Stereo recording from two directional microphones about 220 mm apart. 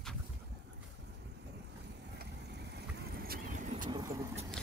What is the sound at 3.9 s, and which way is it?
Vehicle, 20° right (ahead or behind).